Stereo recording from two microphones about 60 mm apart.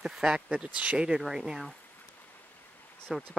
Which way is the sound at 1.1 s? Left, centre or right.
Centre.